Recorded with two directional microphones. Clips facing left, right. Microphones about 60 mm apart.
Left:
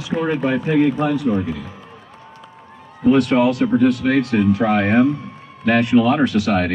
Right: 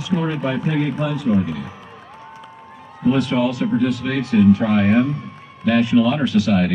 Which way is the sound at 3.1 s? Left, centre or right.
Left.